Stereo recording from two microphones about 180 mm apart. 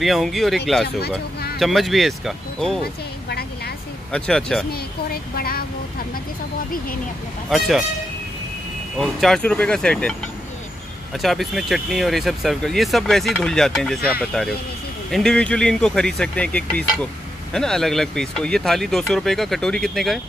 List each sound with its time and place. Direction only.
0.0 s speech: centre (ahead or behind)
1.6 s speech: centre (ahead or behind)
2.8 s music: 60° left (ahead or behind)
4.1 s speech: 5° left (ahead or behind)
4.7 s a sound: 55° left (ahead or behind)
7.4 s speech: centre (ahead or behind)
8.9 s speech: centre (ahead or behind)
11.1 s speech: centre (ahead or behind)